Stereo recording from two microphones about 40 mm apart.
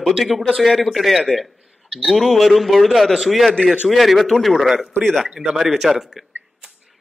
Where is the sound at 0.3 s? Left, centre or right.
Centre.